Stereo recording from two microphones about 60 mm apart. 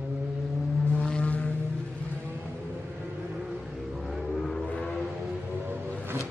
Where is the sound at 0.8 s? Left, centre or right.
Centre.